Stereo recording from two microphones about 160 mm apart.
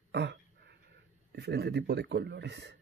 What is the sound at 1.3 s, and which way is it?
Speech, 90° right.